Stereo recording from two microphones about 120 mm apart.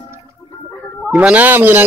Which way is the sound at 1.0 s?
10° right (ahead or behind).